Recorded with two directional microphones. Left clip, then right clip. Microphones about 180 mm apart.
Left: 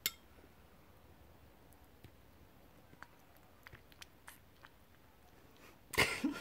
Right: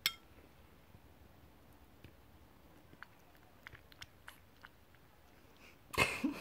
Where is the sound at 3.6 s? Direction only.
20° left (ahead or behind).